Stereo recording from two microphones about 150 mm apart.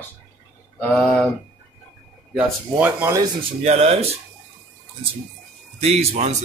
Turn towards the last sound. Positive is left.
turn(degrees=-45)  # may be behind; listen again after turning